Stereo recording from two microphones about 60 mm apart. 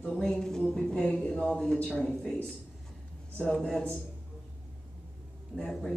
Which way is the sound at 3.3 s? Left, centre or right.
Centre.